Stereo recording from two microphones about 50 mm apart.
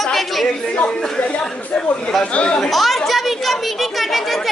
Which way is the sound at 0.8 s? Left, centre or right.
Centre.